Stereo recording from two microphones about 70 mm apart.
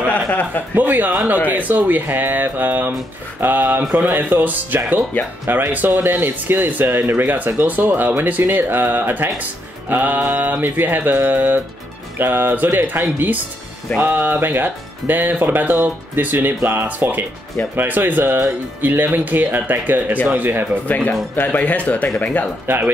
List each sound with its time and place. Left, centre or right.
0.7 s speech: right
3.3 s mantra: right
3.9 s speech: right
20.8 s speech: left